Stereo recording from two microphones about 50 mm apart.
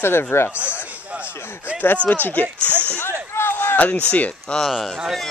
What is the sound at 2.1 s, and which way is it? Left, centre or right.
Speech, left.